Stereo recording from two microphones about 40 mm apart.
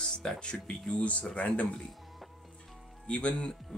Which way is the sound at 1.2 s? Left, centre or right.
Left.